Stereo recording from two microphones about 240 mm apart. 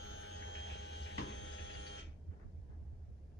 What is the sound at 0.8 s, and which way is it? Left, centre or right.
Printer, left.